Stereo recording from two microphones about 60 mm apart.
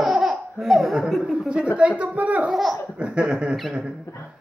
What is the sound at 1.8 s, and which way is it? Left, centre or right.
Speech, right.